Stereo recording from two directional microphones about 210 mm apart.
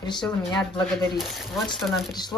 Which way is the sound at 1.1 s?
Centre (ahead or behind).